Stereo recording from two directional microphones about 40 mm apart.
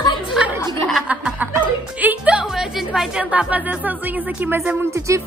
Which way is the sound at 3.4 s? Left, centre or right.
Right.